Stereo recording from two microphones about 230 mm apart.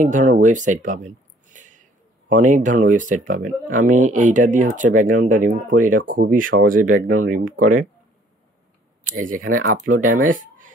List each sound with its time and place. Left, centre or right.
0.0 s speech: right
9.0 s speech: right